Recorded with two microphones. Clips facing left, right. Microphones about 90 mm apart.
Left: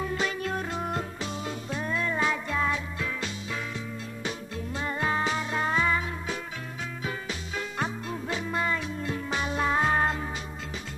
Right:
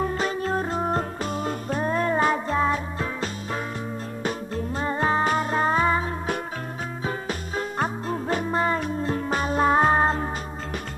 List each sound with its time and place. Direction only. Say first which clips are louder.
0.0 s music: right 4 dB; 40° right (ahead or behind)
5.2 s music: right 6 dB; 50° right (ahead or behind)